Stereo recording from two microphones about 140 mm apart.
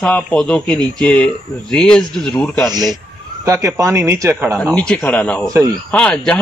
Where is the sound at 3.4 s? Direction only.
20° right (ahead or behind).